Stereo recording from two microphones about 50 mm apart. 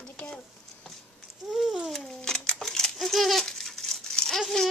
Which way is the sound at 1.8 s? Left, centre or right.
Centre.